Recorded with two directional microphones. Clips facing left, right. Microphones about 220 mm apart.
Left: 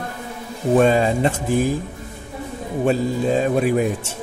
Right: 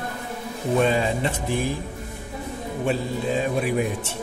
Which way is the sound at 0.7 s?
45° left (ahead or behind).